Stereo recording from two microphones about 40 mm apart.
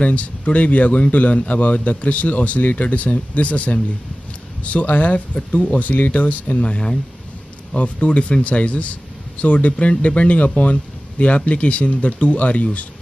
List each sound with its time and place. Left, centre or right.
0.0 s speech: left